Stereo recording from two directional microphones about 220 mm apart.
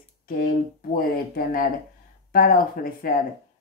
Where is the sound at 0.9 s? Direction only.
40° left (ahead or behind).